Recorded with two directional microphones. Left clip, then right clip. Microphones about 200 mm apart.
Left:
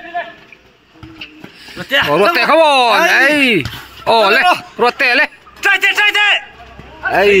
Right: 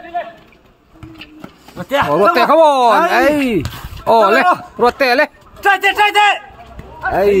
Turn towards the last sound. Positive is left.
turn(degrees=-5)  # may be behind; listen again after turning